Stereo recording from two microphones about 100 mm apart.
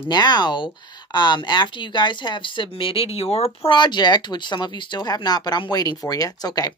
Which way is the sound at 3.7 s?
50° left (ahead or behind).